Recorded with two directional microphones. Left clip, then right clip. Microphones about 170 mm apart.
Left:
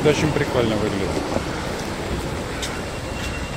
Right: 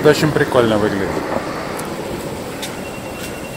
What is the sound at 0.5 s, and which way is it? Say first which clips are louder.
Speech: right 8 dB; 30° right (ahead or behind).